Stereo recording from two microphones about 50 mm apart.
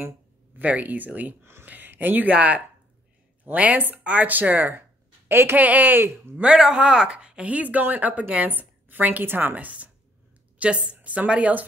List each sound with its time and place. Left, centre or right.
0.6 s a woman's voice: right
1.4 s speech: right
1.7 s speech: right
2.3 s a woman's voice: right
5.6 s a woman's voice: right
5.9 s speech: right
6.4 s a woman's voice: centre